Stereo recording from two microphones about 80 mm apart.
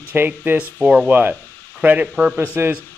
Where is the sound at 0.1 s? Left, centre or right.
Right.